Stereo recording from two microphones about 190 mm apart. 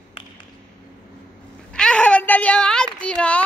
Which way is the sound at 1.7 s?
5° left (ahead or behind).